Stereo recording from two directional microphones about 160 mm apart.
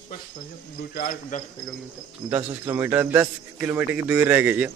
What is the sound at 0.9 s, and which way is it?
Speech, 60° left (ahead or behind).